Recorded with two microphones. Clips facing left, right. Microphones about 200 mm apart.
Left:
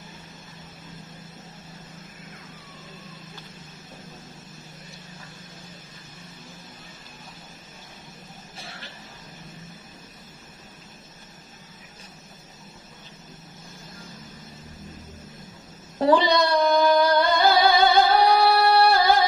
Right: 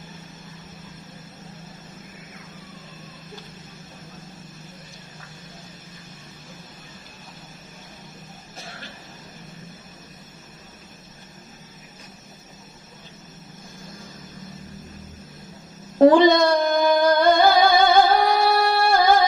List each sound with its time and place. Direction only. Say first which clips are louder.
16.1 s singing: right 2 dB; 50° right (ahead or behind)